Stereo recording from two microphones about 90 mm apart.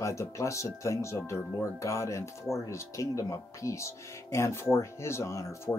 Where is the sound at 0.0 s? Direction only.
35° left (ahead or behind).